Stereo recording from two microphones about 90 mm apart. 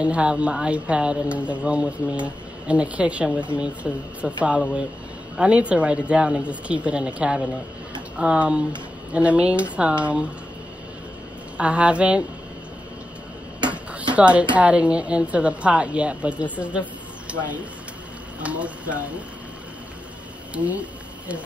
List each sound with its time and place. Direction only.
0.0 s speech: 10° right (ahead or behind)
11.5 s speech: 15° right (ahead or behind)
14.1 s speech: 15° right (ahead or behind)
17.3 s a sound: 15° right (ahead or behind)
18.4 s speech: 15° right (ahead or behind)
20.5 s speech: 15° right (ahead or behind)